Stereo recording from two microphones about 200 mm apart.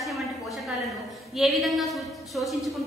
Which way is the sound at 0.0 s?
Centre (ahead or behind).